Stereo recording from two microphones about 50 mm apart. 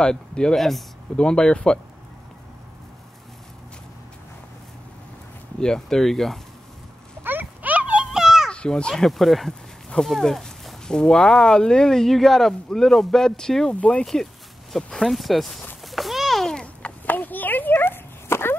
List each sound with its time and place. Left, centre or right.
0.0 s speech: centre
0.6 s speech: centre
1.1 s speech: centre
5.6 s speech: centre
7.2 s clip-clop: right
8.1 s baby cry: centre
8.5 s a sound: centre
8.9 s speech: centre
10.0 s a sound: centre
10.9 s speech: centre
14.0 s speech: centre
15.8 s a sound: centre
16.8 s a sound: left